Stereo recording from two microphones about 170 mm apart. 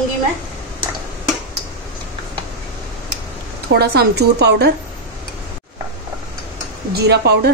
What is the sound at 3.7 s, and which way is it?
A woman's voice, 70° right (ahead or behind).